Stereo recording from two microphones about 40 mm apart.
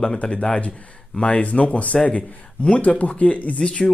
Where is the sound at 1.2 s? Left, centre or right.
Left.